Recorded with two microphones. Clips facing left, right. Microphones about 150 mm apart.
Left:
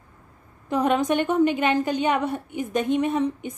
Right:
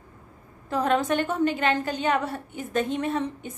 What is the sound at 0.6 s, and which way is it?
A woman's voice, 15° left (ahead or behind).